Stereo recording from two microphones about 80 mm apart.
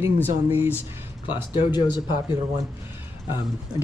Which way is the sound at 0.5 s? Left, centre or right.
Right.